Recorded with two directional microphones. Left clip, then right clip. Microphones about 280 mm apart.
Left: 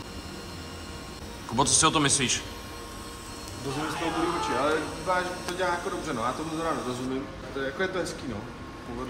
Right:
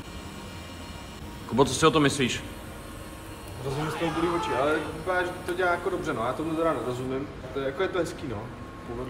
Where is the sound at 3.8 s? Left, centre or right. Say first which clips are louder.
Right 1 dB; centre.